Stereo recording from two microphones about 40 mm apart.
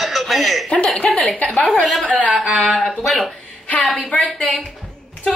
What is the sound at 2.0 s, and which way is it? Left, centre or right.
Speech, left.